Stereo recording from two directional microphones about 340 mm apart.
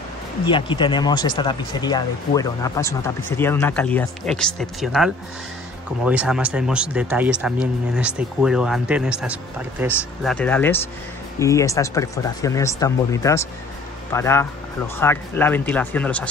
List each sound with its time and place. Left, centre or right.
0.5 s speech: centre